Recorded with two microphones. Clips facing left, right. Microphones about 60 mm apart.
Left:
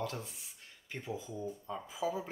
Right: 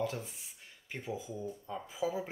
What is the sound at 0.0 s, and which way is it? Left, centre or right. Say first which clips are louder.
Speech: right 3 dB; centre.